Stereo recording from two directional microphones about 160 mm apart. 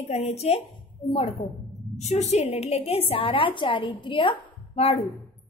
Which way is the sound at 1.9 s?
45° left (ahead or behind).